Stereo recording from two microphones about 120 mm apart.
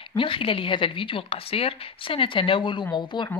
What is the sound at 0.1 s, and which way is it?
A woman's voice, 45° left (ahead or behind).